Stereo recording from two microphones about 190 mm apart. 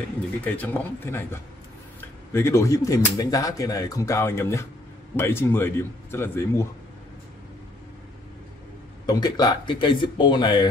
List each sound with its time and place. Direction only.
0.4 s speech: 10° left (ahead or behind)
9.0 s speech: 20° left (ahead or behind)